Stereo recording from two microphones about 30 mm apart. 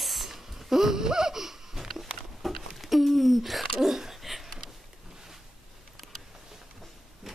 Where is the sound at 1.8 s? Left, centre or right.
Centre.